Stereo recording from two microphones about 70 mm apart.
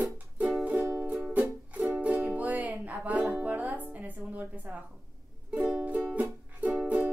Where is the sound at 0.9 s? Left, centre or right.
Centre.